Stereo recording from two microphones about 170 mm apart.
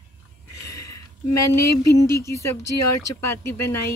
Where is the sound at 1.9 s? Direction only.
15° left (ahead or behind).